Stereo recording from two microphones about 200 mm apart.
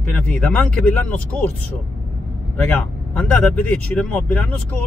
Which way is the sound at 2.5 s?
5° left (ahead or behind).